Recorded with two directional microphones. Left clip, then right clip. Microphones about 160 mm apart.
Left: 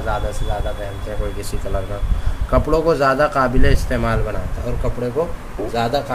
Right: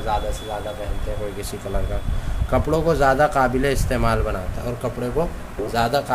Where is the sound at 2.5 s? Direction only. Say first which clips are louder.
Left 3 dB; 10° right (ahead or behind).